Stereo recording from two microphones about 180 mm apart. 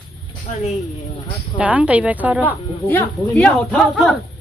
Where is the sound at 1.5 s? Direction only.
10° right (ahead or behind).